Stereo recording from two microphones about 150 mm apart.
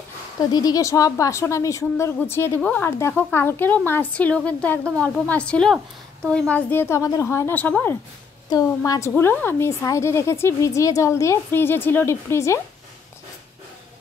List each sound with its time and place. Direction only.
0.4 s a woman's voice: 25° left (ahead or behind)
8.5 s a woman's voice: 25° left (ahead or behind)
9.1 s a woman's voice: 15° left (ahead or behind)